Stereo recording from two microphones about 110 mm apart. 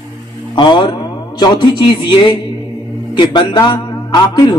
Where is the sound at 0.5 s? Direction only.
45° left (ahead or behind).